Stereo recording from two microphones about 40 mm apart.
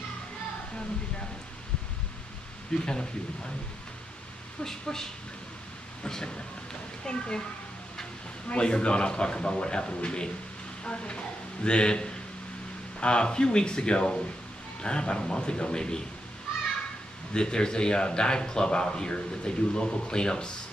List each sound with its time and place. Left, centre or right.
2.7 s a man's voice: left
4.6 s speech: centre
6.0 s a man's voice: left
8.5 s a man's voice: left
17.3 s a man's voice: left